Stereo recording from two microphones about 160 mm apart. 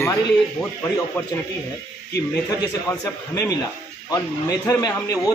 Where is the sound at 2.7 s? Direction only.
20° left (ahead or behind).